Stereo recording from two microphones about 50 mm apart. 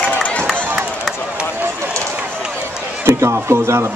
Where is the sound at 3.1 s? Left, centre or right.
Right.